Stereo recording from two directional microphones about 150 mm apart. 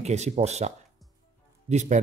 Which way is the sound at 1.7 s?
50° right (ahead or behind).